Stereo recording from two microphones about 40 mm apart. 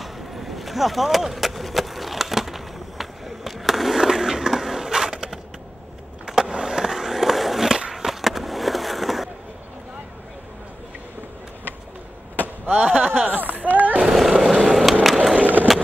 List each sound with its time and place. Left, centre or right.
0.0 s vehicle: centre
6.2 s skateboard: centre
12.4 s chop: right
13.3 s a sound: right
14.1 s vehicle: centre
14.5 s skateboard: centre
15.4 s skateboard: right